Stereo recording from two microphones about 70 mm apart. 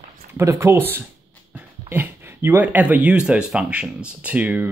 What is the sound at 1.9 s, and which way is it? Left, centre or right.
Speech, right.